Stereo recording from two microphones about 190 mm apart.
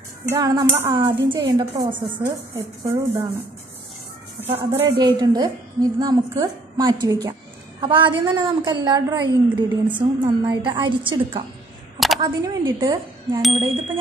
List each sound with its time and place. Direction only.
0.3 s a woman's voice: 15° right (ahead or behind)
4.9 s a woman's voice: 20° right (ahead or behind)